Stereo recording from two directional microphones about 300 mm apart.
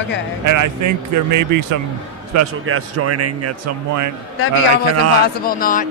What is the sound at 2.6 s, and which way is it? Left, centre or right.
Speech, right.